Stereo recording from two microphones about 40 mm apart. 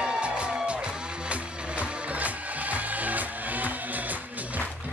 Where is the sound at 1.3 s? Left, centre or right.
Right.